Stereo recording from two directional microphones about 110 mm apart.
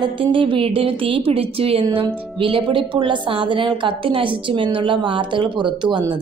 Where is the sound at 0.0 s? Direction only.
50° right (ahead or behind).